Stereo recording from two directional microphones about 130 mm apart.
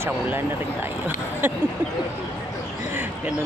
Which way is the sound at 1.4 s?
15° right (ahead or behind).